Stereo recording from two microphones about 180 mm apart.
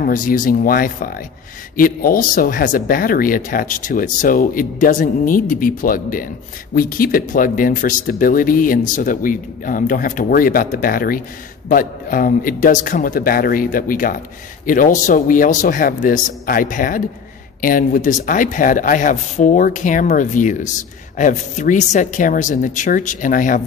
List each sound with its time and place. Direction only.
0.0 s speech: 50° left (ahead or behind)